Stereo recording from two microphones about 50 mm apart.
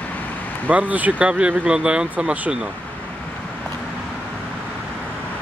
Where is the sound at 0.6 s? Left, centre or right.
Right.